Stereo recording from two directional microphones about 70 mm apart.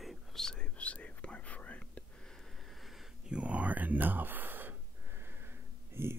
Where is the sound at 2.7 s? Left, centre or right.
Centre.